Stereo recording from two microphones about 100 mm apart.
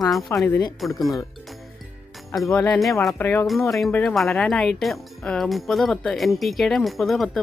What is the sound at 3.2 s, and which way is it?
Speech, 20° left (ahead or behind).